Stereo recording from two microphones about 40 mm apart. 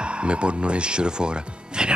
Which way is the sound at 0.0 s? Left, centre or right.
Right.